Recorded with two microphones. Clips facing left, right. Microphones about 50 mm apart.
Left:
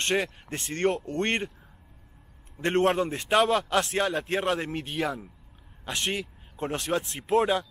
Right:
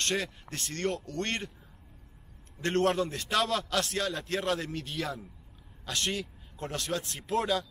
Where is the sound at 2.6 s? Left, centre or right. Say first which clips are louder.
Left 4 dB; left.